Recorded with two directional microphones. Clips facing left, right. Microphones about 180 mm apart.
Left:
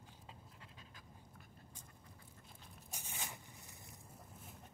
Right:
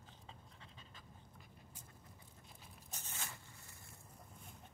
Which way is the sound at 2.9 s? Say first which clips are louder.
Left 2 dB; 10° left (ahead or behind).